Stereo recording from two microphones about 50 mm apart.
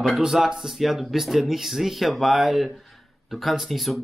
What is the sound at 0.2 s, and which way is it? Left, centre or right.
Speech, centre.